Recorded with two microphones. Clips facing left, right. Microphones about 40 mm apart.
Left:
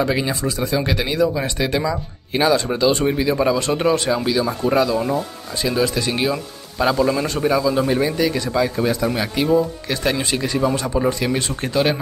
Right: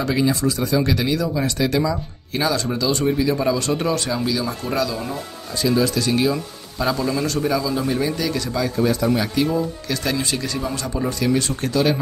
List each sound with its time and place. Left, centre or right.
0.0 s speech: left